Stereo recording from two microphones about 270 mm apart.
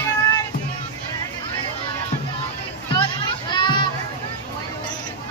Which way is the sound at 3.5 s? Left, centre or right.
Centre.